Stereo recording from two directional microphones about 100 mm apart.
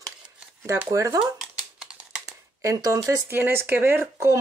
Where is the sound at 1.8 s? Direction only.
5° right (ahead or behind).